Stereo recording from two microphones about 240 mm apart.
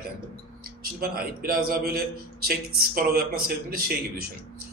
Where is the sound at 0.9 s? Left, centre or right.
Right.